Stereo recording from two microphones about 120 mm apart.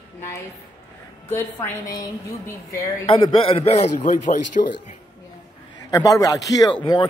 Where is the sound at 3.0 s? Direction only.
50° left (ahead or behind).